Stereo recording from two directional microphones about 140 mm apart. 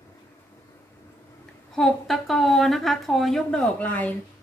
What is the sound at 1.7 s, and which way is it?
A woman's voice, centre (ahead or behind).